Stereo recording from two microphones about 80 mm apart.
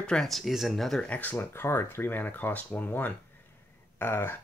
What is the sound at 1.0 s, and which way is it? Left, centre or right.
Speech, centre.